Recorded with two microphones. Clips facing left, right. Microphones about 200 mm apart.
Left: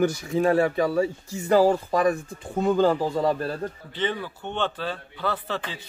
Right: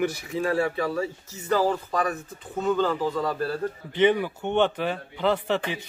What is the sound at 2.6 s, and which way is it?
Speech, 35° left (ahead or behind).